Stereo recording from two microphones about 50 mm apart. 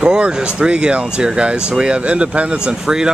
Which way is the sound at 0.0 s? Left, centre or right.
Centre.